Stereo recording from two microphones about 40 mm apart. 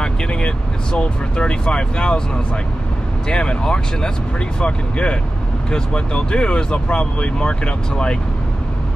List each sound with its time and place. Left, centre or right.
0.0 s vehicle: left
0.9 s speech: left